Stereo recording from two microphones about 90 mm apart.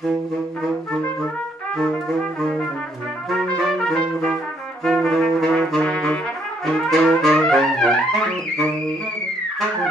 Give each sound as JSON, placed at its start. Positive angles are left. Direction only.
{"t": 3.4, "sound": "trumpet", "side_deg": 5}
{"t": 4.8, "sound": "brass instrument", "side_deg": 0}
{"t": 6.9, "sound": "trumpet", "side_deg": 0}